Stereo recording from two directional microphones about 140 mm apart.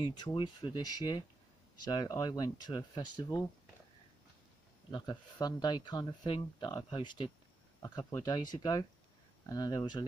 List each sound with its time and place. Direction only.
0.0 s speech: 30° left (ahead or behind)
5.4 s speech: 30° left (ahead or behind)